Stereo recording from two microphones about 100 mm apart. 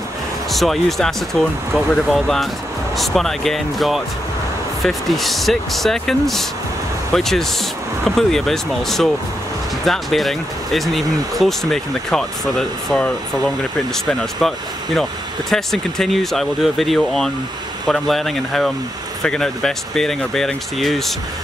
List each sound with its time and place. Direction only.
0.5 s speech: centre (ahead or behind)
15.5 s speech: 5° left (ahead or behind)